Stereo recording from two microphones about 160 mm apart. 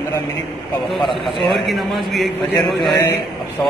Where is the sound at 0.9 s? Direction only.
Centre (ahead or behind).